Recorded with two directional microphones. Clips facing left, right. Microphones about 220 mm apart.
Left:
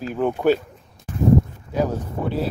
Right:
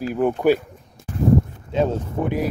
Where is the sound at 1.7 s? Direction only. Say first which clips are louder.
Right 2 dB; 20° right (ahead or behind).